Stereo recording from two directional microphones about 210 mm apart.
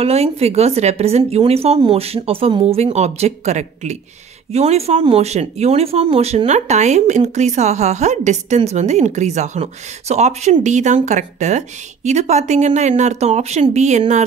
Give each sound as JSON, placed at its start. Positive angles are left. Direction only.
{"t": 0.0, "sound": "speech", "side_deg": -30}